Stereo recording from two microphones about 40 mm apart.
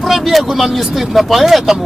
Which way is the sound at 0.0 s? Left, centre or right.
Centre.